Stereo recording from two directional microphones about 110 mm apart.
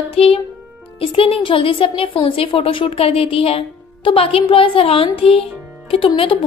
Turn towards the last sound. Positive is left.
turn(degrees=55)  # may be behind; listen again after turning